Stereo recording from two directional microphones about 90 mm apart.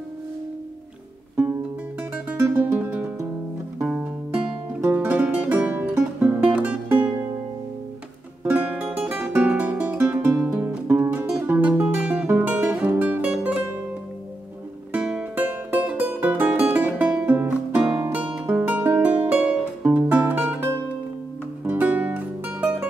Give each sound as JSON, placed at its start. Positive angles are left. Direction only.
{"t": 2.2, "sound": "music", "side_deg": -15}
{"t": 3.8, "sound": "music", "side_deg": -10}
{"t": 8.5, "sound": "music", "side_deg": -15}
{"t": 14.9, "sound": "music", "side_deg": -10}